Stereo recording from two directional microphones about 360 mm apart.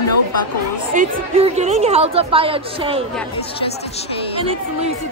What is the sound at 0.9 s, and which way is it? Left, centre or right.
A woman's voice, centre.